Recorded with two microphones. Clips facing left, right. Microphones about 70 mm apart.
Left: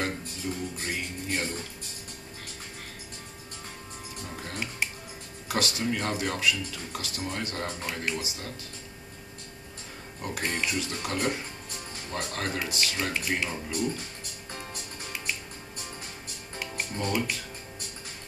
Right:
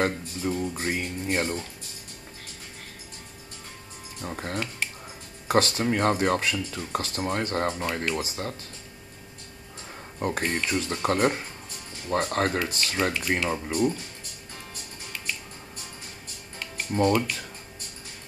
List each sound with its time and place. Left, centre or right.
0.0 s speech: right
4.2 s speech: right
10.1 s speech: right
16.9 s speech: right